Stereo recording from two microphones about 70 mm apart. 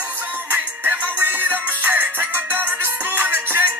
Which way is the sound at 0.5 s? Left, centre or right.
Right.